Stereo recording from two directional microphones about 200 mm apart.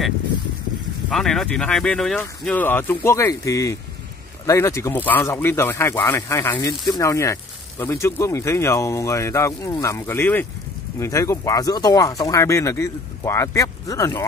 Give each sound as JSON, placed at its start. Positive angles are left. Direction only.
{"t": 1.1, "sound": "speech", "side_deg": 0}